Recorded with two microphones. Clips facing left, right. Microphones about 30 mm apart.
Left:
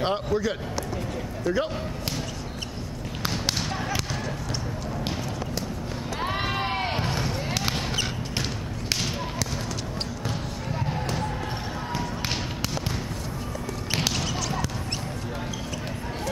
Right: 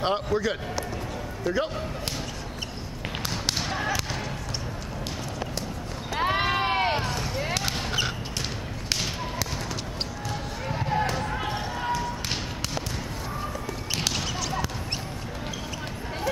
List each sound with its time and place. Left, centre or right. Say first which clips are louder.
0.0 s a man's voice: even; centre
3.5 s basketball bounce: right 1 dB; centre
6.1 s a sound: right 4 dB; centre
7.0 s a sound: left 1 dB; centre
7.3 s basketball bounce: right 1 dB; centre
10.7 s music: right 4 dB; centre